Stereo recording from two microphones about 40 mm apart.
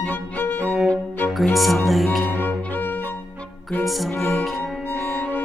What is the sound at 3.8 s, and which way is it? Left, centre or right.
Music, centre.